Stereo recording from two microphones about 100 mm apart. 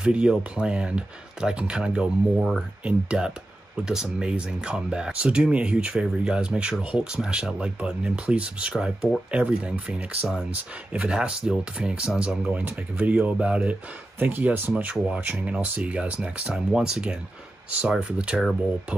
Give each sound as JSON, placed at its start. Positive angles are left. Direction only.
{"t": 0.0, "sound": "speech", "side_deg": -10}